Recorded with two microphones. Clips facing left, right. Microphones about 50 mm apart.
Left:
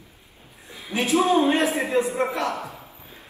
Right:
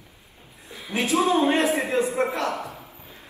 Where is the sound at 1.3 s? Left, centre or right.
Right.